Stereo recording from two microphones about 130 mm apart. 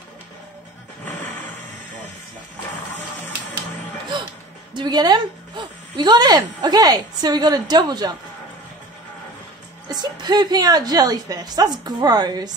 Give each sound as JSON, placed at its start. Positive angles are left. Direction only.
{"t": 4.7, "sound": "a woman's voice", "side_deg": -35}
{"t": 9.8, "sound": "a woman's voice", "side_deg": -30}